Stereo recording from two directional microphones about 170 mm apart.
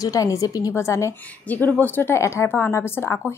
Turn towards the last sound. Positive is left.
turn(degrees=15)  # may be behind; listen again after turning